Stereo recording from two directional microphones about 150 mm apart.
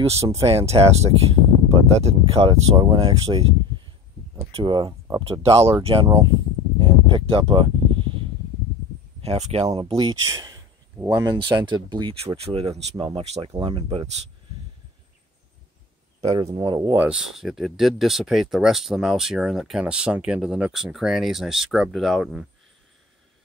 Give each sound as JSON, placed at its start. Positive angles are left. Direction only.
{"t": 0.0, "sound": "speech", "side_deg": -45}
{"t": 2.5, "sound": "speech", "side_deg": -35}
{"t": 6.0, "sound": "a sound", "side_deg": -30}
{"t": 9.2, "sound": "speech", "side_deg": -45}
{"t": 9.7, "sound": "speech", "side_deg": -30}
{"t": 16.4, "sound": "speech", "side_deg": -35}
{"t": 16.9, "sound": "speech", "side_deg": -10}